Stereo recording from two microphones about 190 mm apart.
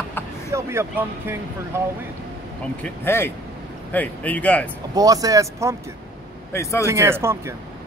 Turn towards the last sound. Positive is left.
turn(degrees=-15)  # may be behind; listen again after turning